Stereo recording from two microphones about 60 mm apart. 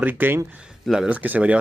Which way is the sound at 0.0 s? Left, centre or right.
Right.